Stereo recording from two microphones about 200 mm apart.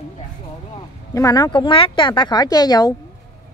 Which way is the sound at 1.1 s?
15° left (ahead or behind).